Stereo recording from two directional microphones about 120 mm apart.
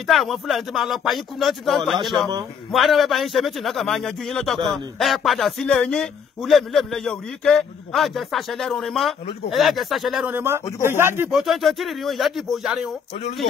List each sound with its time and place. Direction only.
0.0 s speech: centre (ahead or behind)
10.2 s speech: 20° right (ahead or behind)
11.3 s speech: centre (ahead or behind)